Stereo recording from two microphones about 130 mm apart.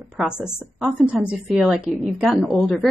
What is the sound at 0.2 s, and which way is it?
A woman's voice, 5° right (ahead or behind).